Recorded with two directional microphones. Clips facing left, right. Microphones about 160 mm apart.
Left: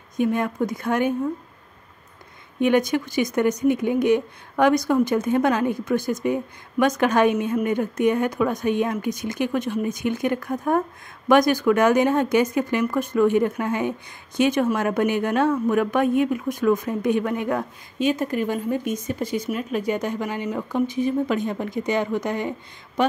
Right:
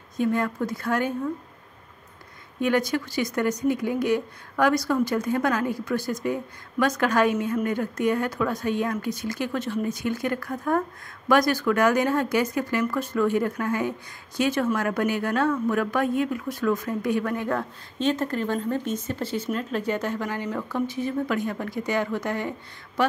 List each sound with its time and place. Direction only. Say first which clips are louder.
0.2 s speech: left 2 dB; 20° left (ahead or behind)
2.6 s speech: left 4 dB; 20° left (ahead or behind)